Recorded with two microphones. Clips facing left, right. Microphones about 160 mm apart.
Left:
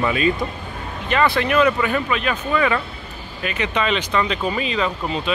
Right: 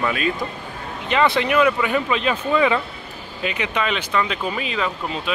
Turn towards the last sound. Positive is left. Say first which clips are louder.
# left 2 dB
turn(degrees=-5)  # may be behind; listen again after turning